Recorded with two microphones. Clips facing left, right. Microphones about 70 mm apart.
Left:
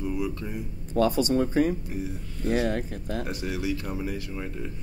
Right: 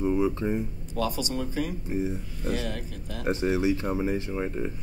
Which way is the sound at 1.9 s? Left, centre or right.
Right.